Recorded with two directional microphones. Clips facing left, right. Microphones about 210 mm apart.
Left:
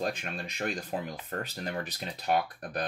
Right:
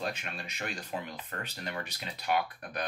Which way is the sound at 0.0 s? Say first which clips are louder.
Left 4 dB; 40° left (ahead or behind).